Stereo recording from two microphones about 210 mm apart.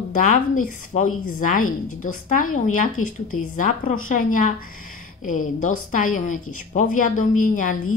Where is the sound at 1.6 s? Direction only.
90° left.